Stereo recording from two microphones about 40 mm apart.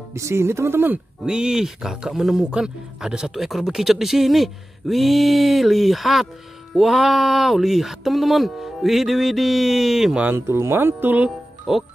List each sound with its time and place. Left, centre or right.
0.4 s speech: right
1.2 s speech: right
3.3 s speech: centre
10.3 s speech: right
11.7 s speech: centre